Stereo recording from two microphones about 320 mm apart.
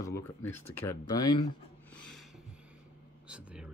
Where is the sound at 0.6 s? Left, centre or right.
Left.